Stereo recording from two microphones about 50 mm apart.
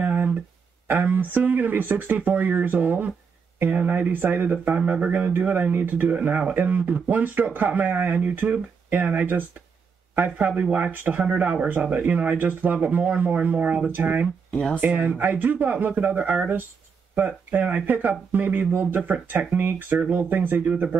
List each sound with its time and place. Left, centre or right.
0.0 s a sound: right
0.8 s speech: right
10.4 s speech: right